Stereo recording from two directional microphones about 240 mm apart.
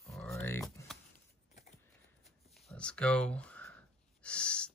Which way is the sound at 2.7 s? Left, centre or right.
Centre.